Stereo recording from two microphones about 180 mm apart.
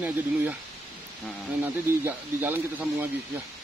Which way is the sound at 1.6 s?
10° right (ahead or behind).